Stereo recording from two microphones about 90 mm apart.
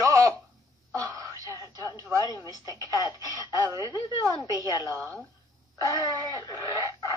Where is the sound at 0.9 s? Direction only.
35° right (ahead or behind).